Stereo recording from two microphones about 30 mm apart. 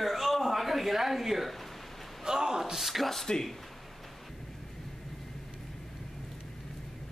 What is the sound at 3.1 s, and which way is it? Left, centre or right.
Speech, centre.